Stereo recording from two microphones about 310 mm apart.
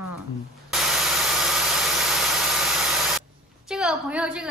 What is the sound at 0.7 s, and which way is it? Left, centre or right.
Engine, centre.